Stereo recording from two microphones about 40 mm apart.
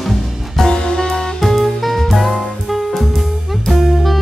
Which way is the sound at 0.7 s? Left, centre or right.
Centre.